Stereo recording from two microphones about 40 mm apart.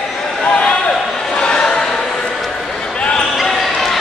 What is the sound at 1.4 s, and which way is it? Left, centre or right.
Choir, left.